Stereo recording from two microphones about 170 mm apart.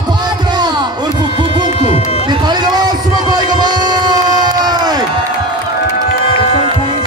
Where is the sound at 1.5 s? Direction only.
25° right (ahead or behind).